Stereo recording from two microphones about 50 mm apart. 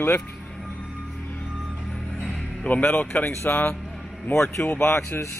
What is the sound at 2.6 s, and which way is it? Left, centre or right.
Speech, left.